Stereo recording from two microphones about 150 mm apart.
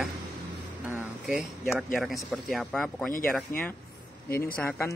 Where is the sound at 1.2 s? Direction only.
5° right (ahead or behind).